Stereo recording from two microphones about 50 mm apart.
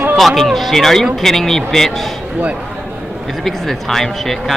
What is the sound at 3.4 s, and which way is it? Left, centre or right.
Speech, centre.